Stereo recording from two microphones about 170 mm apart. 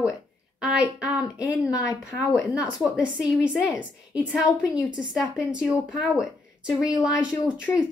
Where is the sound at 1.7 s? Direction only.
20° left (ahead or behind).